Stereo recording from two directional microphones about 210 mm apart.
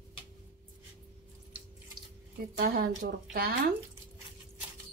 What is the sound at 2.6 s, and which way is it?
Speech, 45° right (ahead or behind).